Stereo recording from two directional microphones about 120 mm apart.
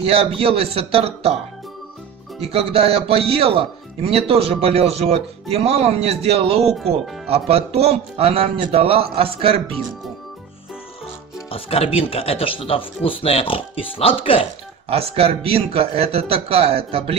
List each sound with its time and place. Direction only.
0.0 s speech: 55° right (ahead or behind)
2.5 s speech: 55° right (ahead or behind)
6.7 s speech: centre (ahead or behind)
7.2 s speech: 55° right (ahead or behind)
11.5 s speech: 55° left (ahead or behind)
14.9 s speech: 55° right (ahead or behind)